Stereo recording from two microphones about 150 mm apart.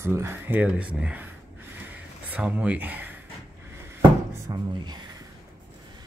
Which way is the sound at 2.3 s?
10° right (ahead or behind).